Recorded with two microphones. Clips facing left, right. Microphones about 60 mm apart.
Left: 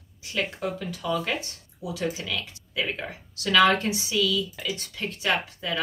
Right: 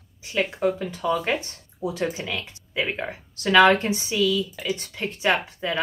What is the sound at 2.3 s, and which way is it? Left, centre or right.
Speech, right.